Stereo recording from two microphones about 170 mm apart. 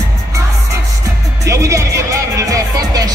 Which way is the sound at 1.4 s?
15° right (ahead or behind).